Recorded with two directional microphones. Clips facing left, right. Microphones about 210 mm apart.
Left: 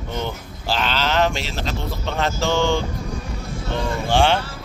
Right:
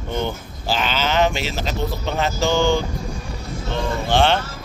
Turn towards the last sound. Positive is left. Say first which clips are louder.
# even
turn(degrees=10)  # may be behind; listen again after turning